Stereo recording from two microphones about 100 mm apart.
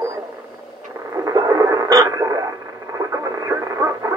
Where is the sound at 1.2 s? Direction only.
35° right (ahead or behind).